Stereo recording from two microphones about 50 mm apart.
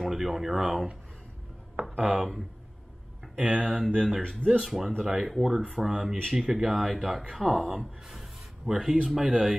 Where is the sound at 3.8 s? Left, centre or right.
Centre.